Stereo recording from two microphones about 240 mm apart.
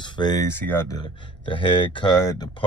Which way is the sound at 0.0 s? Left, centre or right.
Centre.